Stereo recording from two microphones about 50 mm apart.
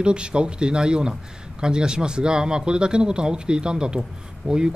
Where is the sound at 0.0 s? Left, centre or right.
Centre.